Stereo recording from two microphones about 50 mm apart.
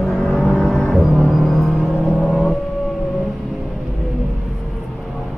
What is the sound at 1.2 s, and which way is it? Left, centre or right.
Music, centre.